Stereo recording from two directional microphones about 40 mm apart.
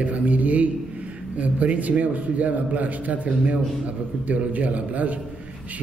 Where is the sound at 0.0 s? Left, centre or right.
Right.